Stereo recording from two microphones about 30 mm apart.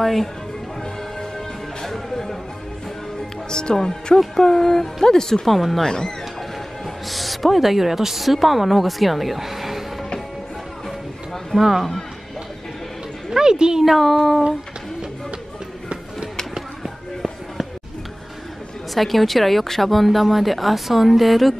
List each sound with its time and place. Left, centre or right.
0.0 s a woman's voice: centre
1.9 s music: centre
3.4 s speech: left
7.1 s a woman's voice: centre
11.5 s speech: centre
13.3 s speech: right
13.8 s a woman's voice: centre
18.9 s a woman's voice: centre